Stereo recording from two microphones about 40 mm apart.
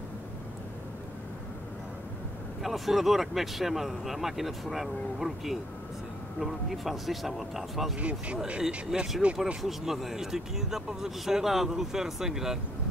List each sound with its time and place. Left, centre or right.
2.6 s speech: centre
8.0 s speech: right
8.9 s speech: centre